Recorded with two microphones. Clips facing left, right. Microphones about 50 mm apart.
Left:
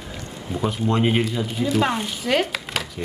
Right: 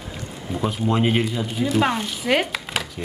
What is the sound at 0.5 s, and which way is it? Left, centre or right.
Speech, centre.